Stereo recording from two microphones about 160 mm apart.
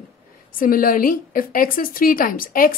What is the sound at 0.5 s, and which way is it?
A woman's voice, 60° left (ahead or behind).